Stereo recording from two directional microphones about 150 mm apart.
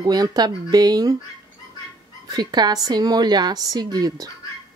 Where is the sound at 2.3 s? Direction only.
30° right (ahead or behind).